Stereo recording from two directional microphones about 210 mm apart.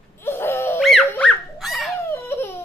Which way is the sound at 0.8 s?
Centre (ahead or behind).